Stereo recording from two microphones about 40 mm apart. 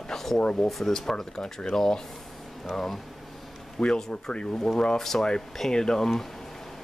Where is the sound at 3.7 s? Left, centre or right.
Centre.